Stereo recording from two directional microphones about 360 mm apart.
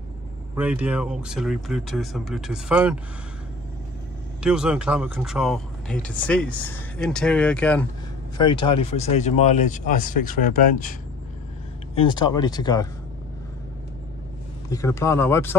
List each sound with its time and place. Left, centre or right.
0.6 s speech: centre
4.4 s speech: centre
14.7 s speech: centre